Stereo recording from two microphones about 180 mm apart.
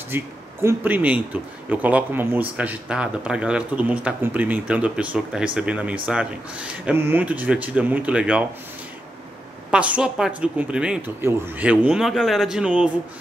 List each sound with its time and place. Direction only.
0.1 s speech: 15° right (ahead or behind)
9.7 s speech: 5° right (ahead or behind)